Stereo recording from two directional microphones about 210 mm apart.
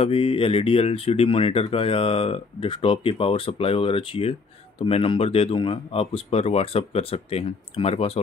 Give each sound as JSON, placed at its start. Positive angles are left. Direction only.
{"t": 0.0, "sound": "speech", "side_deg": 25}